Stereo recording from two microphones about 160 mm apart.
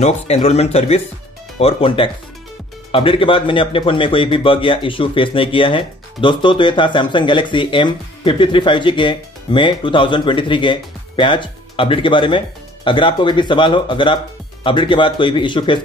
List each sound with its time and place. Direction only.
0.0 s a man's voice: 40° left (ahead or behind)